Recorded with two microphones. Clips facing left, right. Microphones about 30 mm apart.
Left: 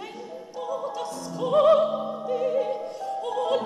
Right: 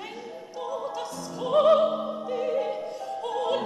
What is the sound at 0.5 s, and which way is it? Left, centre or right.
Music, centre.